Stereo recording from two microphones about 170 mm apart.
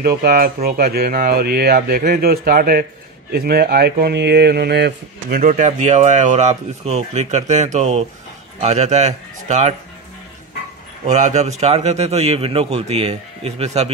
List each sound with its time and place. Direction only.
0.0 s speech: 65° right (ahead or behind)
5.4 s a man's voice: 45° right (ahead or behind)
11.1 s a man's voice: 45° right (ahead or behind)